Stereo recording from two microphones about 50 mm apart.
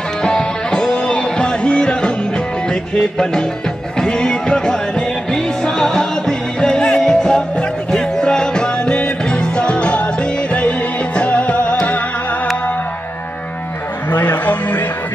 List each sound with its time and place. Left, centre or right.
0.2 s music: centre
11.1 s music: left
14.1 s a sound: left